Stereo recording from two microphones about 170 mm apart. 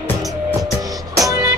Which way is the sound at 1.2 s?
20° right (ahead or behind).